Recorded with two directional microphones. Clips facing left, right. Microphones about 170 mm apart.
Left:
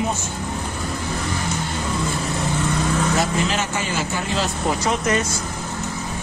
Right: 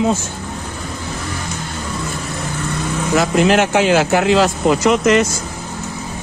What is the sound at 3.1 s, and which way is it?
Speech, 70° right (ahead or behind).